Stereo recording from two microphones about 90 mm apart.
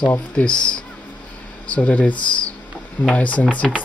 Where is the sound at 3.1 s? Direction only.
15° left (ahead or behind).